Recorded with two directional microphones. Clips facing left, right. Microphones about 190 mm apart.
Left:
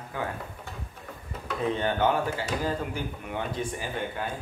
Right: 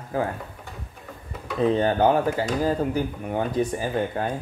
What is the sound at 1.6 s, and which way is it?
Speech, 35° right (ahead or behind).